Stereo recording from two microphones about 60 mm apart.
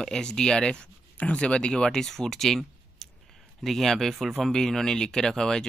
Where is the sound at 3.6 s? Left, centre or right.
Centre.